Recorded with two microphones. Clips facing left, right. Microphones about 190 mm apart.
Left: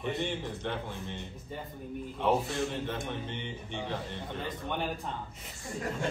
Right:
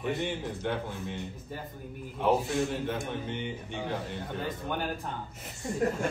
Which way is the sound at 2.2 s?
Centre (ahead or behind).